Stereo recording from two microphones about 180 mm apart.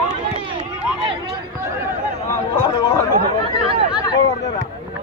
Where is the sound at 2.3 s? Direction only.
20° left (ahead or behind).